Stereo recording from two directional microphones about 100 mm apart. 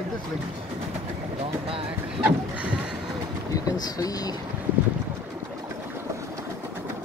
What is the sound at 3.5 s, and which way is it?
Speech, 35° left (ahead or behind).